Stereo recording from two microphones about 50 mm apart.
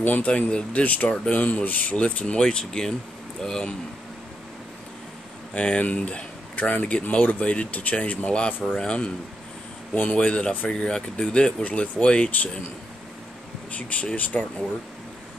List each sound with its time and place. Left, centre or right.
0.0 s speech: left
1.0 s speech: centre
1.3 s speech: left
2.3 s speech: centre
5.5 s speech: left
10.1 s speech: left
11.6 s speech: left
13.7 s speech: left